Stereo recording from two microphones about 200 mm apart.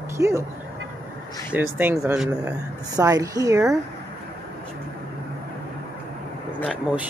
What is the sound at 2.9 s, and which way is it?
Speech, 15° right (ahead or behind).